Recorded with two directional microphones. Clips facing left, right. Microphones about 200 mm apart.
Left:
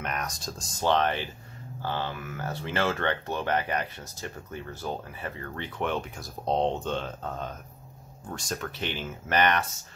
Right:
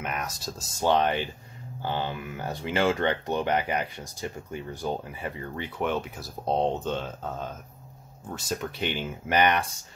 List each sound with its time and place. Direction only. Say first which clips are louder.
0.0 s speech: right 1 dB; 5° right (ahead or behind)